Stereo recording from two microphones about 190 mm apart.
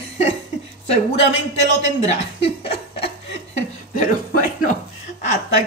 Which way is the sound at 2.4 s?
30° left (ahead or behind).